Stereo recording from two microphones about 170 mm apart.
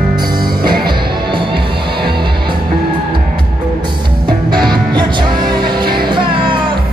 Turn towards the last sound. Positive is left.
turn(degrees=-25)  # may be behind; listen again after turning